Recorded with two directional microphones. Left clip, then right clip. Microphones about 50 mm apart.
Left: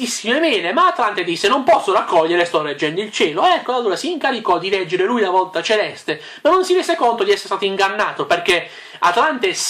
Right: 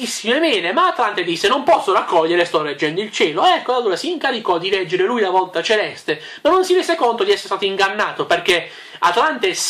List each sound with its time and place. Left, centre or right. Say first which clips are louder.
0.0 s speech: even; centre